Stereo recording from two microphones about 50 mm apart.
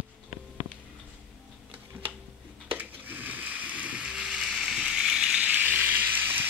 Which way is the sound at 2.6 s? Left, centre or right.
Right.